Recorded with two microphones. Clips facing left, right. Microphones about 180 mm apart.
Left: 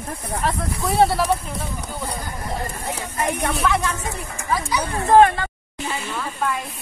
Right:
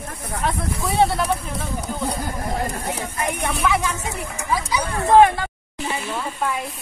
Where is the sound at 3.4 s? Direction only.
10° right (ahead or behind).